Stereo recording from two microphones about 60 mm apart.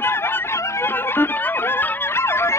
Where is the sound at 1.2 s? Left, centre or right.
Left.